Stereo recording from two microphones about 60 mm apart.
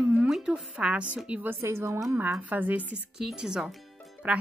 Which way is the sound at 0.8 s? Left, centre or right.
Centre.